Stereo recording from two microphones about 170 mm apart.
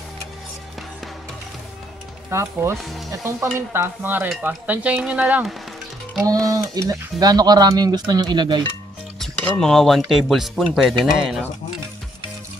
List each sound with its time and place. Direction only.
2.3 s stir: 15° right (ahead or behind)
6.2 s speech: 20° right (ahead or behind)
9.2 s speech: 5° left (ahead or behind)